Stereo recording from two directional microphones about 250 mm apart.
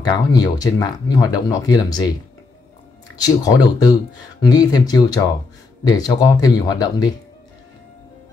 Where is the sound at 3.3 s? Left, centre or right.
Centre.